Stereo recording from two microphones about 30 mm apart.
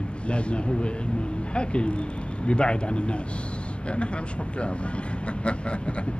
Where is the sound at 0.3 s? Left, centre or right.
Left.